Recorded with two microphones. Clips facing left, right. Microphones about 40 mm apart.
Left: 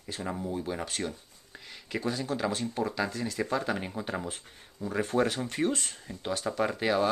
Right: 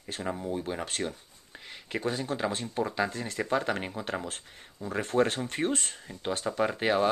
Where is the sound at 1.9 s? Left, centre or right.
Right.